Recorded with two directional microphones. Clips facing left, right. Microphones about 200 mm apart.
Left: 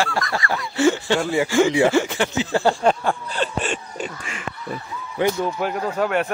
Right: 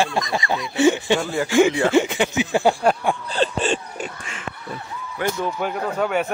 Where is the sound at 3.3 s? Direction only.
30° right (ahead or behind).